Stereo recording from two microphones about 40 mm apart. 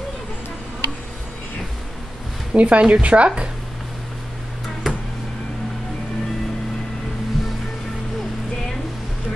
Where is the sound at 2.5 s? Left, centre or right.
Right.